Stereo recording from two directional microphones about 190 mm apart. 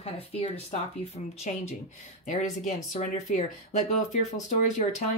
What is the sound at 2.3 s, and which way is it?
Speech, 40° left (ahead or behind).